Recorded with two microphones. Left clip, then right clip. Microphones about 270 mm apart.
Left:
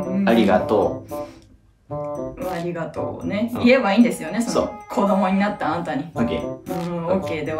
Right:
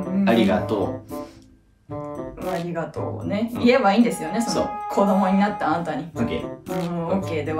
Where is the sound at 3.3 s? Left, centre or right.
Centre.